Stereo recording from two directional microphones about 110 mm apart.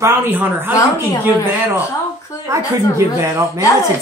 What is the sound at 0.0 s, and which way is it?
Speech, 20° right (ahead or behind).